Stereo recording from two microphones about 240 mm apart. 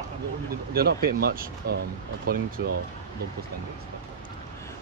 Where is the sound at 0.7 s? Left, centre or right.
Right.